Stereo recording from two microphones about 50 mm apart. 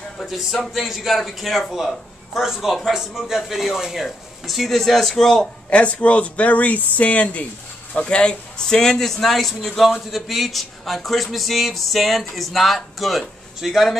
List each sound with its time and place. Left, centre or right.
0.3 s speech: centre
5.7 s speech: left; by 13.9 s centre